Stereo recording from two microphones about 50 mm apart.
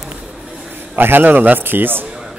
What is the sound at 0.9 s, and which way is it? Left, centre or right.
A man's voice, right.